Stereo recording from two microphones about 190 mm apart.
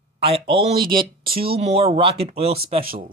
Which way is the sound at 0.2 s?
30° right (ahead or behind).